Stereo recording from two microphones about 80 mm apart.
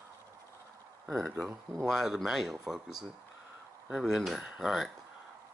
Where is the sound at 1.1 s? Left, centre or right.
Centre.